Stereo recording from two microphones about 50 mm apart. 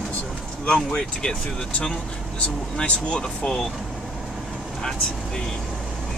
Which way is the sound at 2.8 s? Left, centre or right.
Centre.